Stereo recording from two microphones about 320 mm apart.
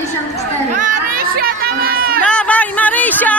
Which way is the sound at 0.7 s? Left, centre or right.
Right.